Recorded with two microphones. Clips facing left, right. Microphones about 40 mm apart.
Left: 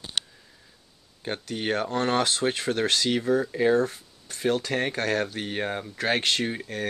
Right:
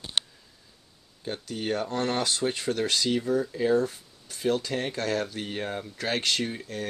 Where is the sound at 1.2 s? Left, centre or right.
Left.